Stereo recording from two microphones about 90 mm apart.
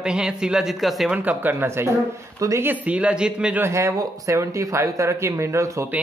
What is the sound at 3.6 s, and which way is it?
Speech, 35° right (ahead or behind).